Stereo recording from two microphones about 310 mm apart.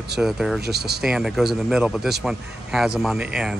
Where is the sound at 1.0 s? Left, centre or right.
Centre.